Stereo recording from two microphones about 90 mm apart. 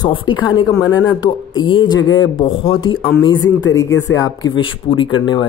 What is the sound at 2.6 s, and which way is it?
Speech, 75° left (ahead or behind).